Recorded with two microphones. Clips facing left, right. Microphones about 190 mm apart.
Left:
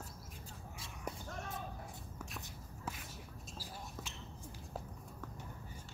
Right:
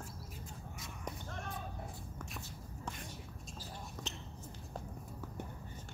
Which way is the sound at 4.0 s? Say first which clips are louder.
Right 5 dB; 5° left (ahead or behind).